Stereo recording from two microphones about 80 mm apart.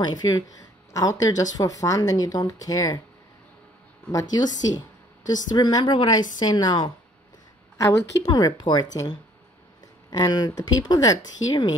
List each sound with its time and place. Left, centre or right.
0.0 s a woman's voice: left
4.1 s a woman's voice: left
7.7 s a woman's voice: left
8.3 s a woman's voice: left
10.1 s a woman's voice: left